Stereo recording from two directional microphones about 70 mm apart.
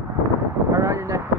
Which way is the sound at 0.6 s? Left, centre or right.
Right.